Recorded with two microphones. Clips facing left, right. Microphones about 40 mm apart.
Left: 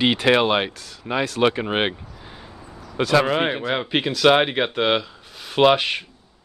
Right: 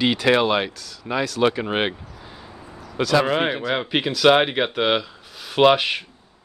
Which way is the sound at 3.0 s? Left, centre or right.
Left.